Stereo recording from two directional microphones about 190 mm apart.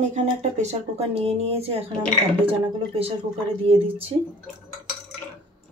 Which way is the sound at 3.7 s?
30° right (ahead or behind).